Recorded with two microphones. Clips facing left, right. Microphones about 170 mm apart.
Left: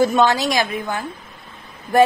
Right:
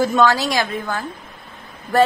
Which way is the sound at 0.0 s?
20° left (ahead or behind).